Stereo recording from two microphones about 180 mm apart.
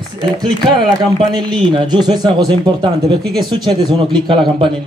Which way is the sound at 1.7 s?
25° right (ahead or behind).